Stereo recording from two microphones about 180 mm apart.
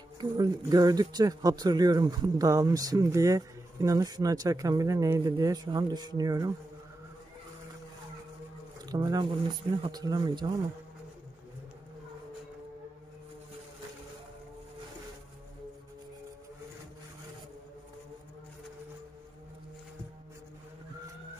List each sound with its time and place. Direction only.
0.2 s speech: 20° right (ahead or behind)
8.8 s speech: 20° right (ahead or behind)